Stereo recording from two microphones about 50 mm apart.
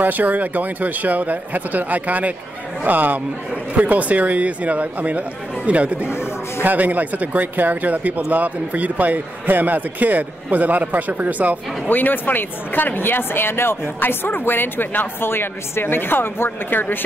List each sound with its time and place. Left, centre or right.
0.0 s a man's voice: right
11.9 s speech: left